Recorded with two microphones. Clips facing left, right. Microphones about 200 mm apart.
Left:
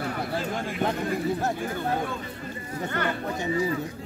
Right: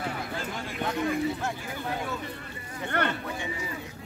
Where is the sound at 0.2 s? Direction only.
45° left (ahead or behind).